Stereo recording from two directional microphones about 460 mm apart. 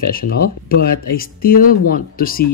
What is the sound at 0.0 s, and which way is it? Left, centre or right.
Speech, centre.